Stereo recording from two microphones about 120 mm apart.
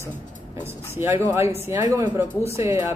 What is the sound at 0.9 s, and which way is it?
Speech, 20° right (ahead or behind).